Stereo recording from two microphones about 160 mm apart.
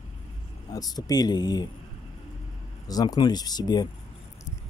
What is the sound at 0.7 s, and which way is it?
Speech, 25° left (ahead or behind).